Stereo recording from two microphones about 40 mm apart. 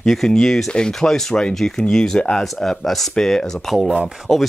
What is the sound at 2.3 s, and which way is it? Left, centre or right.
Speech, centre.